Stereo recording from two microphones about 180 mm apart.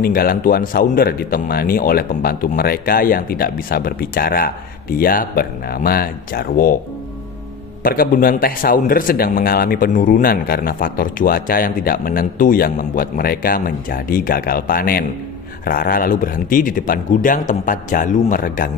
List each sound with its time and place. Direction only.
0.0 s speech: 55° left (ahead or behind)
7.8 s a man's voice: 55° left (ahead or behind)